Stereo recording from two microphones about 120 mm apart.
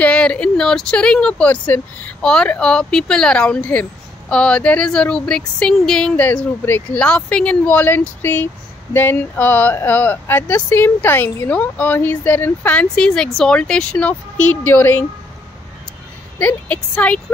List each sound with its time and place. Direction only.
0.0 s speech: 10° left (ahead or behind)
16.3 s speech: 15° left (ahead or behind)